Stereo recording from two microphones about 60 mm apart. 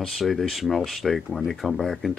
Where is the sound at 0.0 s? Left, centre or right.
Centre.